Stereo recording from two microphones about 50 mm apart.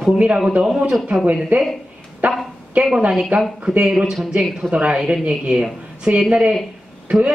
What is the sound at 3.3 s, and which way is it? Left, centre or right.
Speech, right.